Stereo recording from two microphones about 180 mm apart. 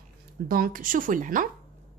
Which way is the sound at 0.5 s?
50° right (ahead or behind).